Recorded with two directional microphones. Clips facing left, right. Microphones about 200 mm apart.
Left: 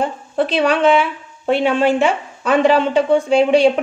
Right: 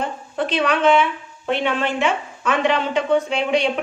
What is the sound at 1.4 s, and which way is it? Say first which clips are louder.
Speech: left 6 dB; 35° left (ahead or behind).